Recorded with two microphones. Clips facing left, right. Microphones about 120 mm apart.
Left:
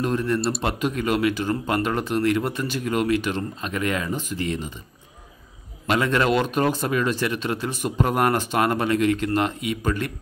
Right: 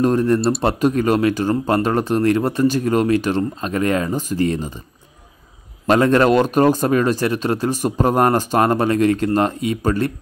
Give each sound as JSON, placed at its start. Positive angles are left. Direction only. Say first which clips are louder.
{"t": 0.0, "sound": "speech", "louder": "right 7 dB", "side_deg": -40}
{"t": 5.9, "sound": "speech", "louder": "right 7 dB", "side_deg": -40}